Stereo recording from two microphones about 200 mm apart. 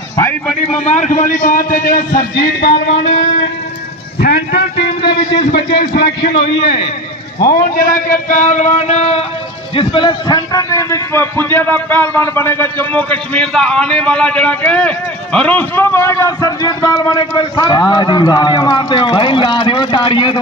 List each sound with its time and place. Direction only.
0.1 s a sound: 10° left (ahead or behind)
0.8 s a man's voice: 35° left (ahead or behind)
2.7 s speech: 25° left (ahead or behind)
4.2 s a man's voice: 55° left (ahead or behind)
7.4 s a man's voice: 45° left (ahead or behind); by 20.3 s 25° left (ahead or behind)